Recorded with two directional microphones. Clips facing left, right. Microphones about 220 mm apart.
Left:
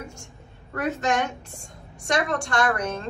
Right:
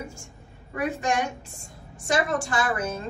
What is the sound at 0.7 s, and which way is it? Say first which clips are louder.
A woman's voice: left 1 dB; 10° right (ahead or behind).